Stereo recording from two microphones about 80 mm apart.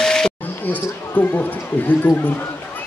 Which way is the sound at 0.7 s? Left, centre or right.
Left.